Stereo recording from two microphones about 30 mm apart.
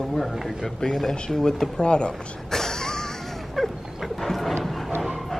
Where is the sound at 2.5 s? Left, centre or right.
Centre.